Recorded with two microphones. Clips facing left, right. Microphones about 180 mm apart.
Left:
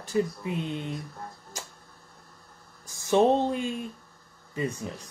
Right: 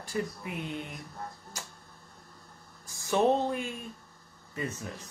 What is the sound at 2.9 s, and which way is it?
Speech, 25° left (ahead or behind).